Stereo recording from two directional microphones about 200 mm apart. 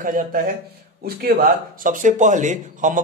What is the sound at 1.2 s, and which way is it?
Speech, 40° right (ahead or behind).